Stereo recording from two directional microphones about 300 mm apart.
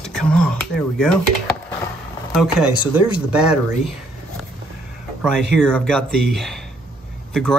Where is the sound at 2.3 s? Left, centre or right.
Centre.